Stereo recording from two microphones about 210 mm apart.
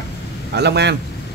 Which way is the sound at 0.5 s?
55° right (ahead or behind).